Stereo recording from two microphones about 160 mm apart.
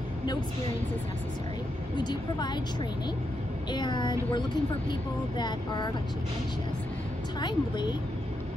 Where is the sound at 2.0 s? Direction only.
25° left (ahead or behind).